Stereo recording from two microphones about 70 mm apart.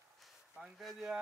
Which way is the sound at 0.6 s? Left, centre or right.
Centre.